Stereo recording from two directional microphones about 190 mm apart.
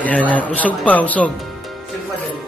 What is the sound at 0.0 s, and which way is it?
A man's voice, 10° left (ahead or behind).